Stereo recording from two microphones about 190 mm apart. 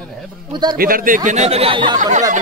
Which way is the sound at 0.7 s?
50° right (ahead or behind).